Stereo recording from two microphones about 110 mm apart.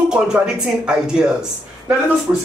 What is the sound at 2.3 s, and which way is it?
Speech, 20° right (ahead or behind).